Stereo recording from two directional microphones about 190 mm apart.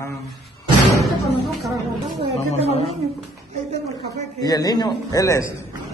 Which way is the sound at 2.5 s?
35° left (ahead or behind).